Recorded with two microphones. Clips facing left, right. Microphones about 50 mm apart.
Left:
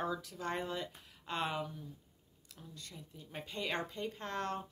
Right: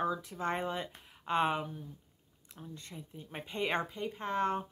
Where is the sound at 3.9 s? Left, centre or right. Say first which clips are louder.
Right 4 dB; centre.